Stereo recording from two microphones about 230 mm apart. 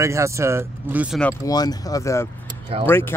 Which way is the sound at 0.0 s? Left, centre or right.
Centre.